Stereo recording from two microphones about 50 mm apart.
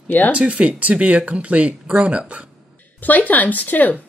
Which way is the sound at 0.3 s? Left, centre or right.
Right.